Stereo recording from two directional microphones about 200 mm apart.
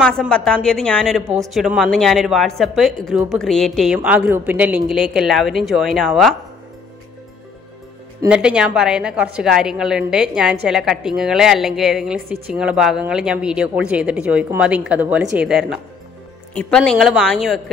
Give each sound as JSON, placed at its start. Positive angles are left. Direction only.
{"t": 0.0, "sound": "a woman's voice", "side_deg": 0}
{"t": 8.3, "sound": "a woman's voice", "side_deg": -5}